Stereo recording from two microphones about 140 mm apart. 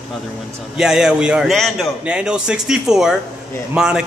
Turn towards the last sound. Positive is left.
turn(degrees=-5)  # may be behind; listen again after turning